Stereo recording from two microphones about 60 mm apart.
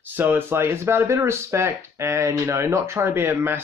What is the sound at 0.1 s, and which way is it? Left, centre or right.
Speech, right.